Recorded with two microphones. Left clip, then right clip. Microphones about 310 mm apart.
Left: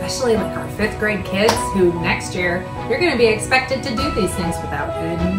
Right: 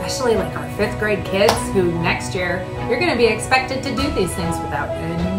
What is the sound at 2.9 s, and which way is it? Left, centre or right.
Speech, centre.